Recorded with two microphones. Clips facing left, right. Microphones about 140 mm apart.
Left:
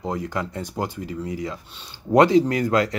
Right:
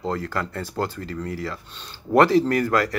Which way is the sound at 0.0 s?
15° left (ahead or behind).